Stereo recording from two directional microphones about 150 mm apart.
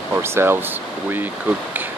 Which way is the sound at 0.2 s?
15° right (ahead or behind).